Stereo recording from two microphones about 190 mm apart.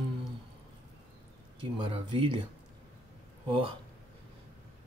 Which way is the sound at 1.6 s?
25° right (ahead or behind).